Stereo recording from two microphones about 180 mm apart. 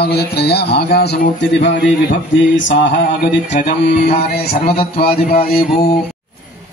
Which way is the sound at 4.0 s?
40° left (ahead or behind).